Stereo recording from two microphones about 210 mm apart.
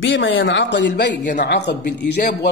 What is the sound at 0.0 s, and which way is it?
Speech, 65° left (ahead or behind).